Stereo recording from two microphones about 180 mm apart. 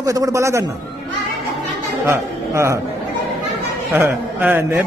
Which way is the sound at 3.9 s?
10° right (ahead or behind).